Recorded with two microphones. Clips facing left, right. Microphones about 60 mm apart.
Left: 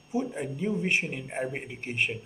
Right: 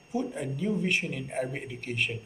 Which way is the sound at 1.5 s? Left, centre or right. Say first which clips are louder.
Left 1 dB; left.